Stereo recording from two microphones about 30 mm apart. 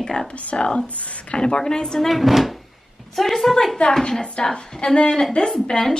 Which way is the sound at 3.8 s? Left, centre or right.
Left.